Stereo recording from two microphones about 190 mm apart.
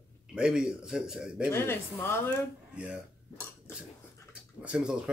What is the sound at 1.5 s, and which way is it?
Speech, 10° left (ahead or behind).